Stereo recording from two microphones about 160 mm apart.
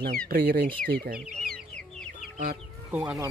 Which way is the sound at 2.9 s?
5° right (ahead or behind).